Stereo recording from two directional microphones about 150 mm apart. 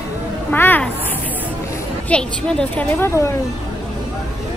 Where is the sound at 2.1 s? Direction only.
5° left (ahead or behind).